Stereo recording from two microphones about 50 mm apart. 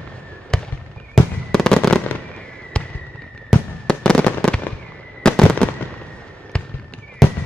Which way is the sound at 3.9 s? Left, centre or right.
Centre.